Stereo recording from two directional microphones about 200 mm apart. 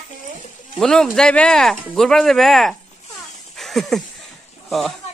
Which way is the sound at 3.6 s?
Centre (ahead or behind).